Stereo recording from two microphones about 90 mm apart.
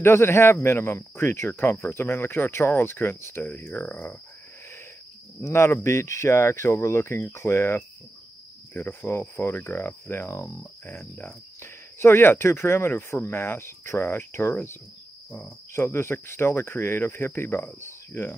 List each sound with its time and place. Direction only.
0.0 s speech: 30° left (ahead or behind)
5.4 s speech: 30° left (ahead or behind)